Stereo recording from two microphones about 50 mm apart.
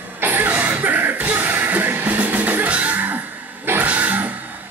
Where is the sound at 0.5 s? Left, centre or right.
Right.